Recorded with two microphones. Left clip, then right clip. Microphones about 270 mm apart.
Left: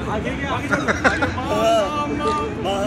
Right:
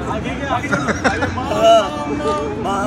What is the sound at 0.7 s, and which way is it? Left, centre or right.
Speech, centre.